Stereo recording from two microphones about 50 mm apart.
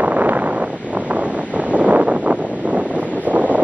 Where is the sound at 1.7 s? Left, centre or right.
Right.